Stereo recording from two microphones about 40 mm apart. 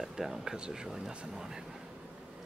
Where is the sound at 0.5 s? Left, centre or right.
Right.